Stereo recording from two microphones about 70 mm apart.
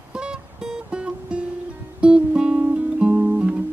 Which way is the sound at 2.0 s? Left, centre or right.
Centre.